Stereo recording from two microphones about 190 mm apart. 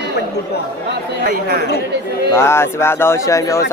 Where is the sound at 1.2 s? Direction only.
50° right (ahead or behind).